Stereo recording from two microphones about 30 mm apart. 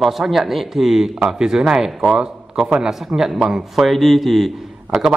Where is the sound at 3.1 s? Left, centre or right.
Right.